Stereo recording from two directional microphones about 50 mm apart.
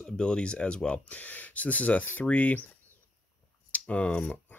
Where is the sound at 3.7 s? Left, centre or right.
Left.